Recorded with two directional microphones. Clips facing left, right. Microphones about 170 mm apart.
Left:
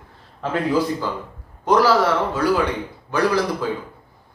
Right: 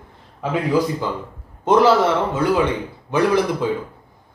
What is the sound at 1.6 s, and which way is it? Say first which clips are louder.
Speech: right 2 dB; 25° right (ahead or behind).